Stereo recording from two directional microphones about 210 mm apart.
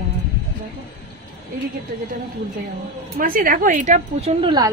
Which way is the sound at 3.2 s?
40° right (ahead or behind).